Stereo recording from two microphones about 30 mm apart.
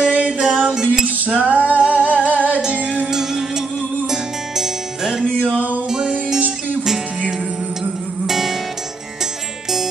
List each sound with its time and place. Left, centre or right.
0.0 s music: right
0.8 s a sound: right
1.4 s music: right
3.1 s music: centre
8.3 s music: centre